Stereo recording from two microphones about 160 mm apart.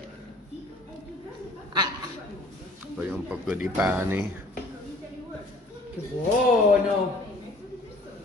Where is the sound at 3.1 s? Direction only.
10° right (ahead or behind).